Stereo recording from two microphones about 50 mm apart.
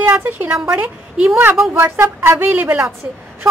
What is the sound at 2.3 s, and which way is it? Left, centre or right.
Speech, right.